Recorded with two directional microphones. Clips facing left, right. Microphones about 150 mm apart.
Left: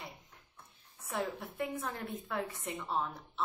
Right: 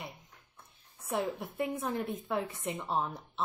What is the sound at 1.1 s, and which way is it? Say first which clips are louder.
A woman's voice: right 4 dB; 20° right (ahead or behind).